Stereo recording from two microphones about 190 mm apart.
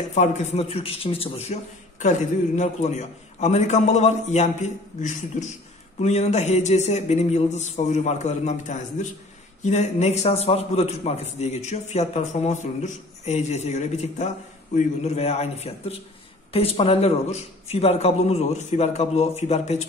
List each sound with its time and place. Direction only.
0.1 s a man's voice: 40° left (ahead or behind)
5.9 s a man's voice: 35° left (ahead or behind)